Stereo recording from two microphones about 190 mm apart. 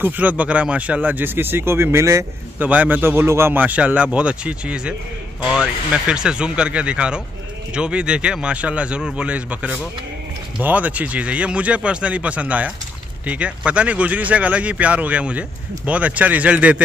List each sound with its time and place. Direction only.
0.0 s speech: 10° right (ahead or behind)